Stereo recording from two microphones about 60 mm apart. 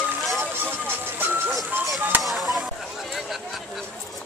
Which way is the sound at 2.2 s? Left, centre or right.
Centre.